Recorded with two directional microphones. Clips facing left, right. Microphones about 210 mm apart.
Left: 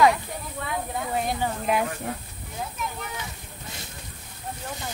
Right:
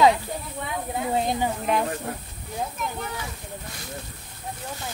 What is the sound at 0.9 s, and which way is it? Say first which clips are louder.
Speech: right 4 dB; 20° right (ahead or behind).